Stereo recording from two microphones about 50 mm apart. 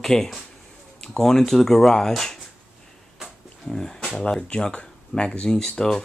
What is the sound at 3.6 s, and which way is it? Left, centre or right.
Speech, centre.